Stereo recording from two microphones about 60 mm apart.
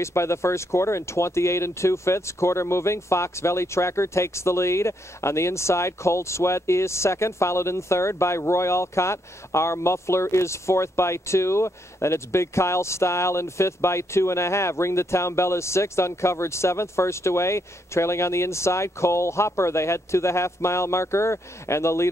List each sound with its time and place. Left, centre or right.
0.0 s speech: left